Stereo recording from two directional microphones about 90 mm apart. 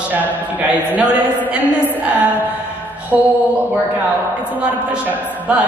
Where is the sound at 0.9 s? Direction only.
15° right (ahead or behind).